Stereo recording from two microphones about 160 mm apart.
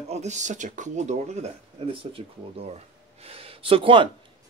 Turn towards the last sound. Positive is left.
turn(degrees=-35)  # may be behind; listen again after turning